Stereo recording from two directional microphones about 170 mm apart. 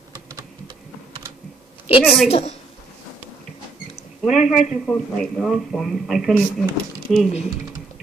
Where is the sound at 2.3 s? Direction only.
35° left (ahead or behind).